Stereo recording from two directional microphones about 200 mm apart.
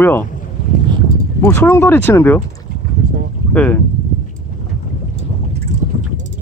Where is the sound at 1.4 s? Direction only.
10° left (ahead or behind).